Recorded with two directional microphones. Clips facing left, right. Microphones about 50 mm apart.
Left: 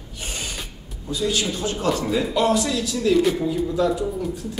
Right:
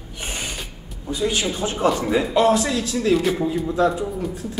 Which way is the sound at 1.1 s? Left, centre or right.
Right.